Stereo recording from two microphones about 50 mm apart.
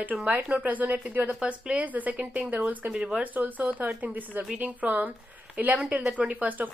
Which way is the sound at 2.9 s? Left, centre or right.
Centre.